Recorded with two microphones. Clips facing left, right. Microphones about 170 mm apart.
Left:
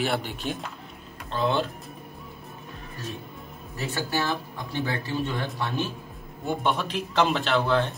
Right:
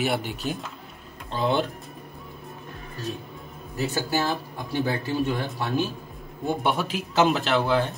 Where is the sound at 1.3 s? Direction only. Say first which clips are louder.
Right 1 dB; 15° right (ahead or behind).